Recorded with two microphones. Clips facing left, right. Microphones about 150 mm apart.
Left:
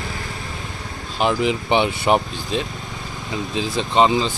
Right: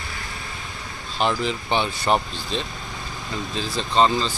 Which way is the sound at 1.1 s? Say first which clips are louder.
Left 4 dB; 10° left (ahead or behind).